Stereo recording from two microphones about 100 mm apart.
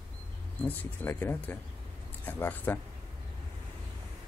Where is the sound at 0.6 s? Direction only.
15° left (ahead or behind).